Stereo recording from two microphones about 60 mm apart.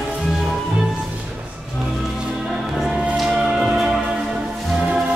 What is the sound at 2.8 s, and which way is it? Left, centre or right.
Music, centre.